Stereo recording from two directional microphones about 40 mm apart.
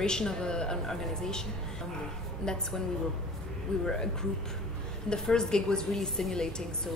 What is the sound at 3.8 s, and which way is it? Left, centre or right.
A woman's voice, centre.